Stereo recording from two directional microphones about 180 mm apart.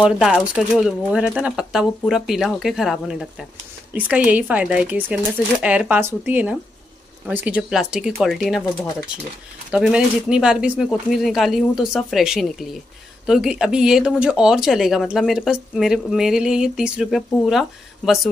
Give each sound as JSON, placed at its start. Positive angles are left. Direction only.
{"t": 0.0, "sound": "speech", "side_deg": -5}
{"t": 9.7, "sound": "speech", "side_deg": -5}